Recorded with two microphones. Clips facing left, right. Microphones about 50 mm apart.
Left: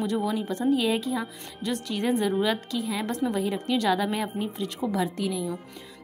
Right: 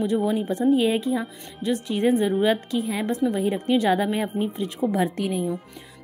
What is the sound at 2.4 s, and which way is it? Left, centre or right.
Speech, right.